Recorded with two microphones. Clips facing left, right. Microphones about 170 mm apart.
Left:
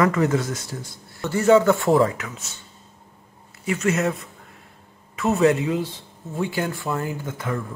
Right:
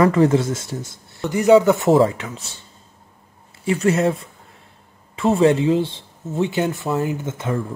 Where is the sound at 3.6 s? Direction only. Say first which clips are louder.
Right 4 dB; 30° right (ahead or behind).